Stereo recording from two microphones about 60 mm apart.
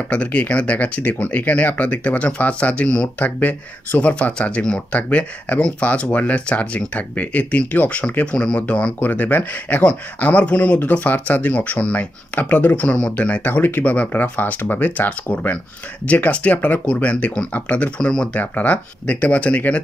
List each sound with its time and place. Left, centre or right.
0.1 s speech: left
3.2 s speech: left
18.4 s speech: left